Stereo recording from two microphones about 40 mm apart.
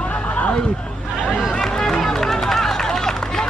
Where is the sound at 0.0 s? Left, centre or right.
Left.